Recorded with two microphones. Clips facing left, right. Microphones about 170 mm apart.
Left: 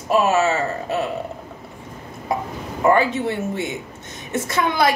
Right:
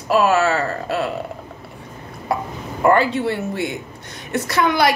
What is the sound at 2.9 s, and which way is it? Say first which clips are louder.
A woman's voice: right 1 dB; 20° left (ahead or behind).